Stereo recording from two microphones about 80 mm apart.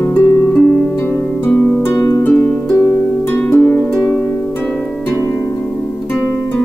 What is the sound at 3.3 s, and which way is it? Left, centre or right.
Harp, left.